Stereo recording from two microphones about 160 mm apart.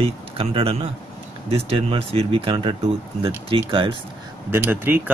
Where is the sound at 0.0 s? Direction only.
35° right (ahead or behind).